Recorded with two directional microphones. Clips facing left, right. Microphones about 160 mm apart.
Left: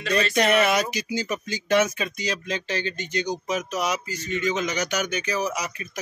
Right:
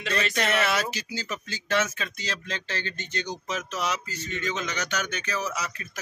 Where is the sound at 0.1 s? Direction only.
15° left (ahead or behind).